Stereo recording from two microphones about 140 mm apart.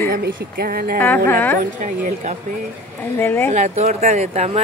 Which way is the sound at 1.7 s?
60° right (ahead or behind).